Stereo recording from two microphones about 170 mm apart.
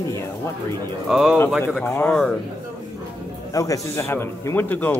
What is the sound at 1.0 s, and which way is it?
Speech, 5° right (ahead or behind).